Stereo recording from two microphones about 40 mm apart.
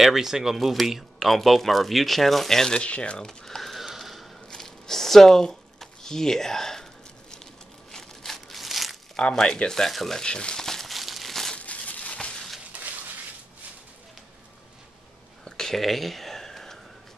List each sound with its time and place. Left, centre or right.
0.0 s speech: centre
2.8 s speech: left
3.3 s a sound: centre
4.5 s a sound: centre
9.1 s speech: centre
10.2 s speech: left
10.6 s crumpling: centre
11.0 s crumpling: centre
11.5 s a sound: left
15.4 s whispering: centre